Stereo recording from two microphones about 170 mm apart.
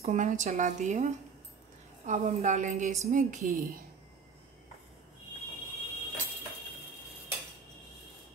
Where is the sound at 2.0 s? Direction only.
45° right (ahead or behind).